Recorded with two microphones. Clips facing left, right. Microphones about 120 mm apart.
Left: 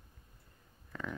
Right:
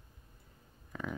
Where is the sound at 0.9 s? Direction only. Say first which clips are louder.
Right 1 dB; 5° right (ahead or behind).